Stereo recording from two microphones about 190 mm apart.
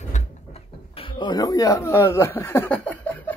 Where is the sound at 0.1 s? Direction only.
30° left (ahead or behind).